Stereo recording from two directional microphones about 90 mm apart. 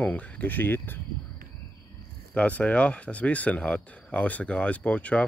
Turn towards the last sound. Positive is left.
turn(degrees=15)  # may be behind; listen again after turning